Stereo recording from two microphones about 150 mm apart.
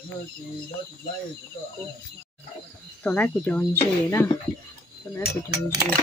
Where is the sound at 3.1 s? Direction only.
10° left (ahead or behind).